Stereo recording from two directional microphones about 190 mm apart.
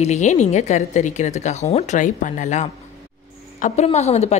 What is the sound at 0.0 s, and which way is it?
Speech, 40° left (ahead or behind).